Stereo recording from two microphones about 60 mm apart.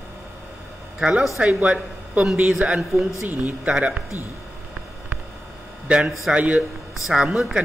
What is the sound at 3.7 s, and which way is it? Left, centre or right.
Speech, centre.